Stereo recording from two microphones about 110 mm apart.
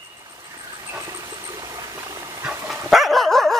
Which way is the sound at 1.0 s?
35° right (ahead or behind).